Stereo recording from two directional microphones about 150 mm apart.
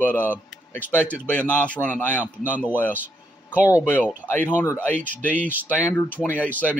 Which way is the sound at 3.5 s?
10° right (ahead or behind).